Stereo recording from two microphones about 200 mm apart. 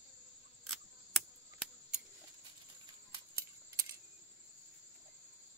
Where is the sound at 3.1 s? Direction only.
15° right (ahead or behind).